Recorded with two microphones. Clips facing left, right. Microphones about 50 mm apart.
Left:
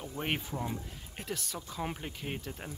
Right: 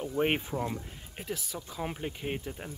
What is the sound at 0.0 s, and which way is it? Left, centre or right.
Speech, centre.